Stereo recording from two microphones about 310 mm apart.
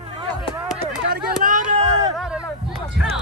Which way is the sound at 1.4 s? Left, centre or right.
Right.